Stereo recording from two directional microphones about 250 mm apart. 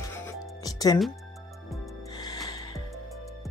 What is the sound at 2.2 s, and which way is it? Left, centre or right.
Music, centre.